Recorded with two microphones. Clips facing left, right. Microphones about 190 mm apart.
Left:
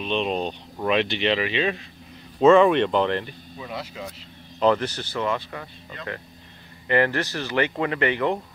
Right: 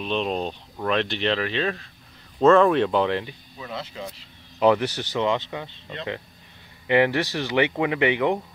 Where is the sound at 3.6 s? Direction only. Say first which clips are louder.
Even; 10° left (ahead or behind).